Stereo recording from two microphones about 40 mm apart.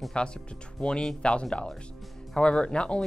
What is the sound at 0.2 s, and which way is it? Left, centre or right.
Speech, left.